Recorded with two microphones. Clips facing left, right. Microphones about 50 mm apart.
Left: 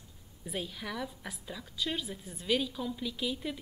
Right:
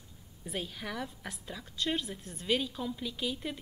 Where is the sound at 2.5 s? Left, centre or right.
Centre.